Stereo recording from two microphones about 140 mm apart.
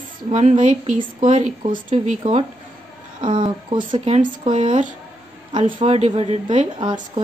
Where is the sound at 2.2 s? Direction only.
40° right (ahead or behind).